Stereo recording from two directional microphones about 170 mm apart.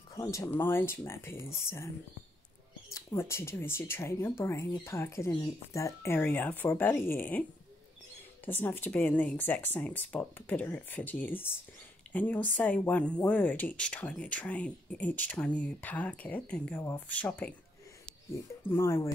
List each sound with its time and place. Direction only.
0.1 s speech: 20° left (ahead or behind)
2.9 s speech: 15° left (ahead or behind)
8.5 s speech: 10° left (ahead or behind)
18.7 s speech: 15° left (ahead or behind)